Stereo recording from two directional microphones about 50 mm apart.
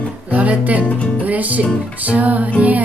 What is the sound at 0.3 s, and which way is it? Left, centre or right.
Music, right.